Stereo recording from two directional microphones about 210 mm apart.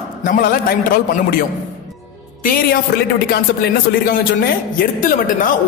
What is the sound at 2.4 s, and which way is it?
A woman's voice, 45° left (ahead or behind).